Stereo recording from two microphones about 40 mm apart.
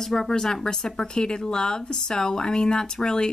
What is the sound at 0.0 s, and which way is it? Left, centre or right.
Speech, centre.